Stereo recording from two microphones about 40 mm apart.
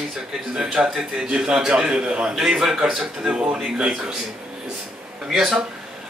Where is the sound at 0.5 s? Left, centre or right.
Right.